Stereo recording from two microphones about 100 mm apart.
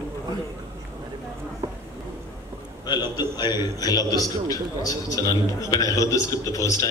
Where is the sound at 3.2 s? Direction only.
45° left (ahead or behind).